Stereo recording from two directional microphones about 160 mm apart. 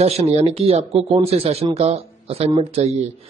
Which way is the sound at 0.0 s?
40° right (ahead or behind).